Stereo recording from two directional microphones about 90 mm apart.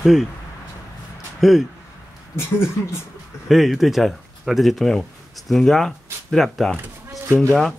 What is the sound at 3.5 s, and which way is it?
Speech, centre (ahead or behind).